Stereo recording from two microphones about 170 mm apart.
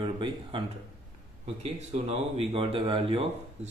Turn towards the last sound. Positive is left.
turn(degrees=-35)  # may be behind; listen again after turning